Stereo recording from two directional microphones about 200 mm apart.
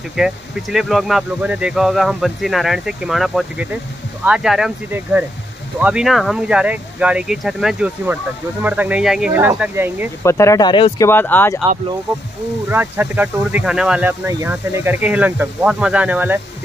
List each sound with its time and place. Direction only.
0.1 s speech: centre (ahead or behind)
10.2 s speech: 15° left (ahead or behind)
11.1 s speech: 10° left (ahead or behind)
12.6 s speech: 10° right (ahead or behind)